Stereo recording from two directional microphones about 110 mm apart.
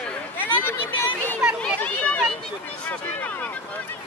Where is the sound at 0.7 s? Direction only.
20° left (ahead or behind).